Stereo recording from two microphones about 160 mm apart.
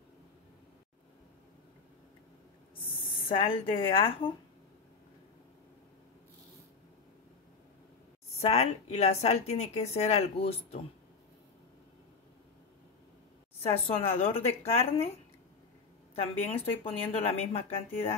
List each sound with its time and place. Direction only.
2.9 s speech: 35° left (ahead or behind)
8.4 s a woman's voice: 40° left (ahead or behind)
13.6 s a woman's voice: 40° left (ahead or behind)
16.2 s a woman's voice: 40° left (ahead or behind)